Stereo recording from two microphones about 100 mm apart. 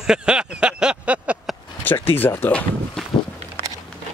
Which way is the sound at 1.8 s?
20° left (ahead or behind).